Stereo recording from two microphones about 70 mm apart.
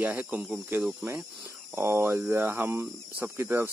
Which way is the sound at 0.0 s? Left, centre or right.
Right.